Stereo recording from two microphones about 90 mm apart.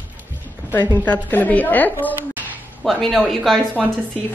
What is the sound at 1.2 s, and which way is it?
Speech, 20° left (ahead or behind).